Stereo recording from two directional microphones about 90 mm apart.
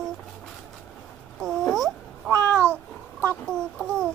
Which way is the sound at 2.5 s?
25° right (ahead or behind).